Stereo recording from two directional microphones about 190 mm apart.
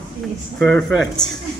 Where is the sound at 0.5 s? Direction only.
5° left (ahead or behind).